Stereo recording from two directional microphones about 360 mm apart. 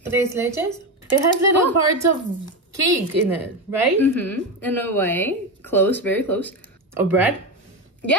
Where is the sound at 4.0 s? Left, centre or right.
Centre.